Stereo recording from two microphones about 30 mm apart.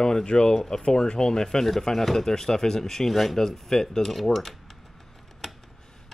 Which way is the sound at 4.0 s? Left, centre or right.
Centre.